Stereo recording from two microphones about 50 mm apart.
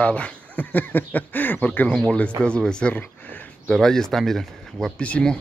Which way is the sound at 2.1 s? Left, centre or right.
Left.